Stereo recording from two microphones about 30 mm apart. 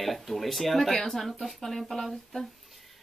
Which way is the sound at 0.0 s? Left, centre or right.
Centre.